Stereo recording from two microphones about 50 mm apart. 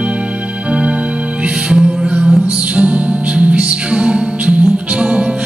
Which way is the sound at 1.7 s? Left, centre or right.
Centre.